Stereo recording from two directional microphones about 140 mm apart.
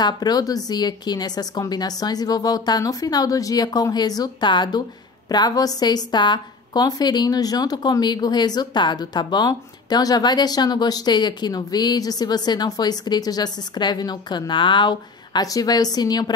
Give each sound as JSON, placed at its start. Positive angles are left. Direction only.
{"t": 0.0, "sound": "a woman's voice", "side_deg": 30}